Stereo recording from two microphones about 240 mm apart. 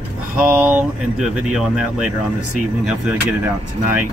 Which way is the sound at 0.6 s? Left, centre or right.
Centre.